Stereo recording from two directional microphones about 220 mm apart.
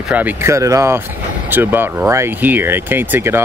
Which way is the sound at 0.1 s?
10° right (ahead or behind).